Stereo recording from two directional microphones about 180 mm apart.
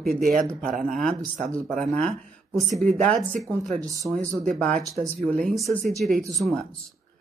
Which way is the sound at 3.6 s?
45° right (ahead or behind).